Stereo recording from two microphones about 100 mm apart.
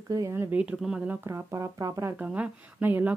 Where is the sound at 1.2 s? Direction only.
30° right (ahead or behind).